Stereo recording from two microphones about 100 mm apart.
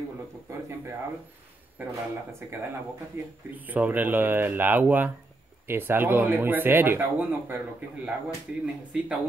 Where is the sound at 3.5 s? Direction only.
15° right (ahead or behind).